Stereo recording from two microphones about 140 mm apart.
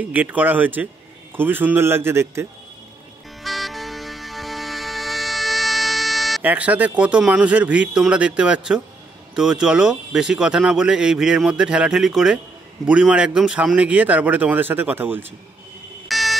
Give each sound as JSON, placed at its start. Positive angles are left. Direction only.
{"t": 0.0, "sound": "speech", "side_deg": -10}
{"t": 3.4, "sound": "music", "side_deg": 0}
{"t": 6.4, "sound": "speech", "side_deg": -10}
{"t": 16.1, "sound": "a sound", "side_deg": 0}